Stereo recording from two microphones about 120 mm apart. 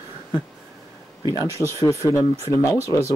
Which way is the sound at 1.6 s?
25° left (ahead or behind).